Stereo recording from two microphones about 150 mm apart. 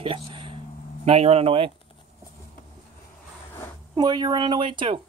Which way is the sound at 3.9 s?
30° right (ahead or behind).